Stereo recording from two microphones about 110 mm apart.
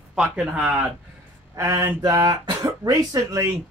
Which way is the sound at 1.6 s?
30° right (ahead or behind).